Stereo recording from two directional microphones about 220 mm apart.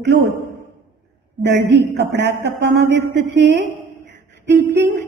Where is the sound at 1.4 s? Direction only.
50° right (ahead or behind).